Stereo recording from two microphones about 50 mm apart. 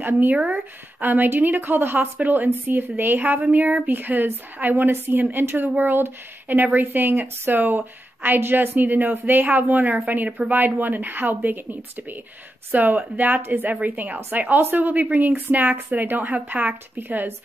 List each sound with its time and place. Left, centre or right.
0.0 s a woman's voice: right